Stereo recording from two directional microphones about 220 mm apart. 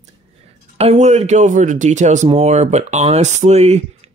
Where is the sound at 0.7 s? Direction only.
30° right (ahead or behind).